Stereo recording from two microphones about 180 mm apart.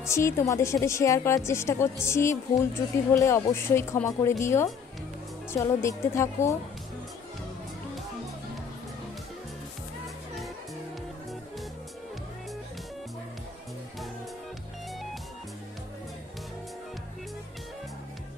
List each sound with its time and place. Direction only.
0.0 s a woman's voice: 15° left (ahead or behind)